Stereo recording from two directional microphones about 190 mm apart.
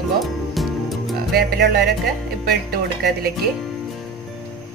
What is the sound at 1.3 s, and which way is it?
Speech, 60° right (ahead or behind).